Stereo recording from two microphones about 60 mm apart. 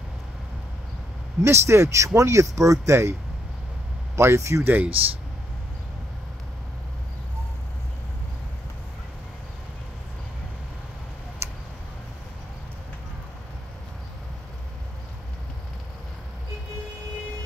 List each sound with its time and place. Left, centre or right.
1.4 s speech: right
4.2 s speech: right
4.6 s speech: right
11.4 s a sound: right